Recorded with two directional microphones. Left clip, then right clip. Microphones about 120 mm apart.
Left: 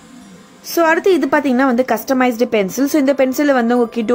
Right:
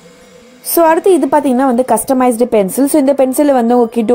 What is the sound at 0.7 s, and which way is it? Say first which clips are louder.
Speech: right 4 dB; 40° right (ahead or behind).